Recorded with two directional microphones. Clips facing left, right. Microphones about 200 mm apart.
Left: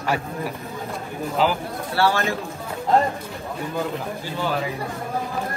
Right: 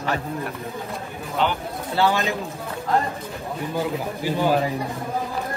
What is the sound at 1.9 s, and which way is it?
Speech, 15° right (ahead or behind).